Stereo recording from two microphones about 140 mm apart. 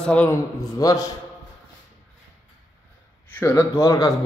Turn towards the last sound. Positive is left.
turn(degrees=25)  # may be behind; listen again after turning